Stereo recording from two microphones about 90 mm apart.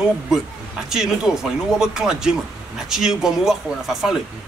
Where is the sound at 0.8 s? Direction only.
5° right (ahead or behind).